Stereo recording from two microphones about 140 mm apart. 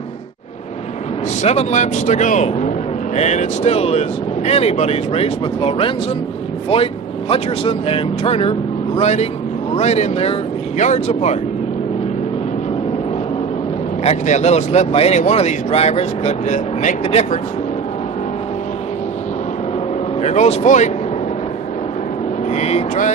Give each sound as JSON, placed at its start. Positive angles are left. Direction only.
{"t": 1.4, "sound": "speech", "side_deg": 55}
{"t": 14.0, "sound": "speech", "side_deg": 55}
{"t": 20.2, "sound": "speech", "side_deg": 50}
{"t": 22.6, "sound": "speech", "side_deg": 50}